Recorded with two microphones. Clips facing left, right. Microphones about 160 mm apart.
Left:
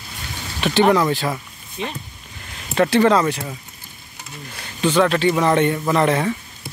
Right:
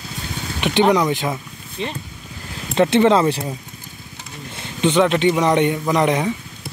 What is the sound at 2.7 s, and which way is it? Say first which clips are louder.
Speech: right 1 dB; 25° right (ahead or behind).